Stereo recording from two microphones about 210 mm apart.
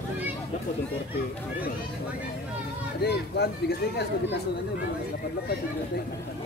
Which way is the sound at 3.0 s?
50° left (ahead or behind).